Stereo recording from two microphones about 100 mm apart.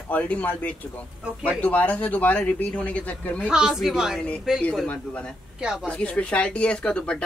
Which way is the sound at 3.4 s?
5° right (ahead or behind).